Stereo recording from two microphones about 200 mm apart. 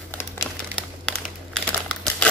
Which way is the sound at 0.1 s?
10° left (ahead or behind).